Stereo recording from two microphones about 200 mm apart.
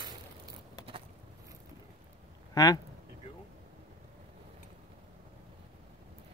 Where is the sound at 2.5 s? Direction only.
20° left (ahead or behind).